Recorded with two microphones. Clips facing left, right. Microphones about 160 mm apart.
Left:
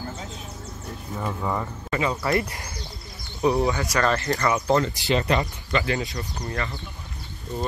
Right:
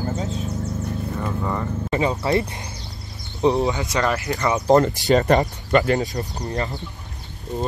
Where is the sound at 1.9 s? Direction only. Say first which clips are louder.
Right 3 dB; 30° right (ahead or behind).